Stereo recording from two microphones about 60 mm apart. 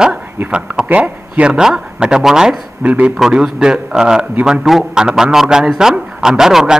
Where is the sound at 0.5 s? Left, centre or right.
Centre.